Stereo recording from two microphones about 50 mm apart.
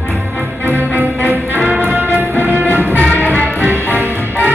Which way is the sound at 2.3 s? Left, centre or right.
Left.